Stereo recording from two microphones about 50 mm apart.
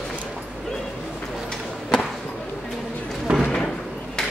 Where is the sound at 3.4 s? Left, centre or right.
Centre.